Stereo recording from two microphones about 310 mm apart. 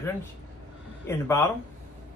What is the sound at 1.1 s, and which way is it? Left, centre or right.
Speech, centre.